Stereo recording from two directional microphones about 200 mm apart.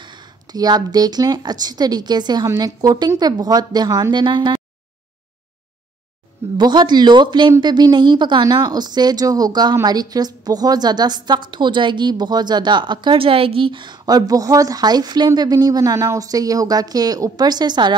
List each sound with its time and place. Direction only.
0.0 s a woman's voice: 20° right (ahead or behind)
6.6 s a woman's voice: 20° right (ahead or behind)